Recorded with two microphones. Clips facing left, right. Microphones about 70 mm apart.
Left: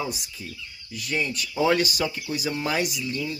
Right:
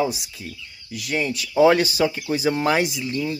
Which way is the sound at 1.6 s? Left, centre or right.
Right.